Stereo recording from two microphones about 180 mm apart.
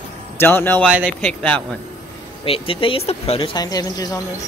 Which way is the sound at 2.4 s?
30° left (ahead or behind).